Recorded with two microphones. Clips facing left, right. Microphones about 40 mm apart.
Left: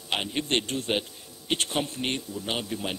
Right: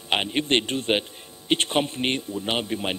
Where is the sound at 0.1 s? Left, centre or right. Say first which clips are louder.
Right 5 dB; right.